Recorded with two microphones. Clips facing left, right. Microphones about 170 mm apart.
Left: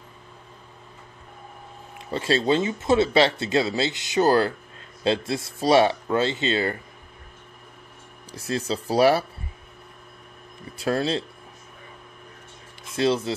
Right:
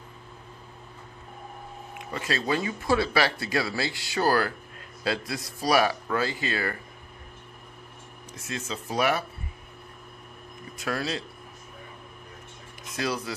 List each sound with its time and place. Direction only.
2.0 s speech: 30° left (ahead or behind)
8.3 s speech: 35° left (ahead or behind)
10.8 s speech: 30° left (ahead or behind)
12.8 s speech: 25° left (ahead or behind)